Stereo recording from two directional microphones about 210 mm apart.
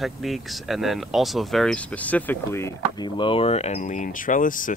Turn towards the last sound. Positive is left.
turn(degrees=40)  # may be behind; listen again after turning